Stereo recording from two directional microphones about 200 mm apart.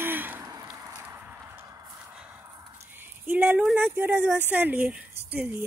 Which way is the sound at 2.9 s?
10° right (ahead or behind).